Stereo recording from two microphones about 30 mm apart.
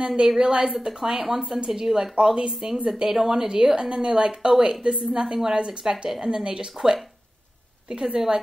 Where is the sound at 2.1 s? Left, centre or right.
Right.